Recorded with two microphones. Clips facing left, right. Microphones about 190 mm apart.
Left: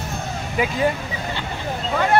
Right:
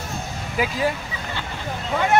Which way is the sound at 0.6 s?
Centre (ahead or behind).